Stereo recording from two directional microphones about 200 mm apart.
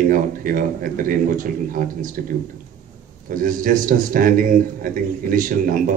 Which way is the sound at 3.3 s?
45° right (ahead or behind).